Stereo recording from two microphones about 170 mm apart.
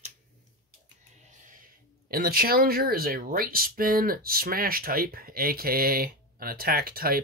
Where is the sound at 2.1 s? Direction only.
60° right (ahead or behind).